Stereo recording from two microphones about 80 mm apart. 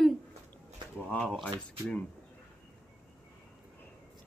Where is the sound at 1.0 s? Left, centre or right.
Centre.